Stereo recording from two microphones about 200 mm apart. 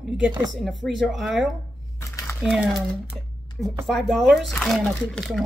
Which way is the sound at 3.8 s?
Centre (ahead or behind).